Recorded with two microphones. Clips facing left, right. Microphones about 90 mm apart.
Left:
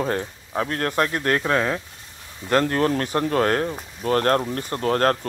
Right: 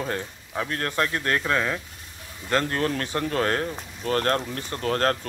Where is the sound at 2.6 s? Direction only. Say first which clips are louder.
Left 5 dB; 35° left (ahead or behind).